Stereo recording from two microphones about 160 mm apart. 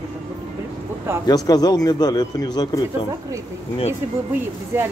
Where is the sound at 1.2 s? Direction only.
25° left (ahead or behind).